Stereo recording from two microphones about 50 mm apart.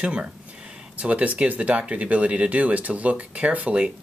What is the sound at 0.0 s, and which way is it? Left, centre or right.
Speech, right.